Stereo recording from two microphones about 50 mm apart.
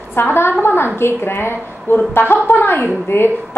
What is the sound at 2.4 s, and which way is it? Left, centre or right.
Speech, left.